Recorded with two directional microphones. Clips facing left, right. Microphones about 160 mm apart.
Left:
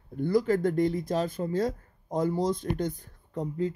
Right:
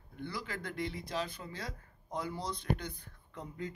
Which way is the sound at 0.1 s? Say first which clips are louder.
Left 17 dB; 45° left (ahead or behind).